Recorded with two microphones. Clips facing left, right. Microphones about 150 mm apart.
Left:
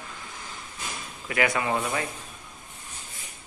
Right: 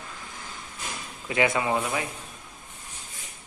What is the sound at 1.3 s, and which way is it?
Speech, 20° right (ahead or behind).